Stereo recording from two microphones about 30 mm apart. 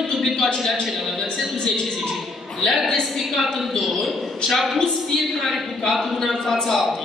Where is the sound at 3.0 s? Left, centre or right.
Centre.